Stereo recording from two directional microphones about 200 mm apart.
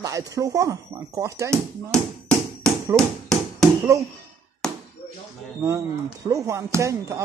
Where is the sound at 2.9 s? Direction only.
5° left (ahead or behind).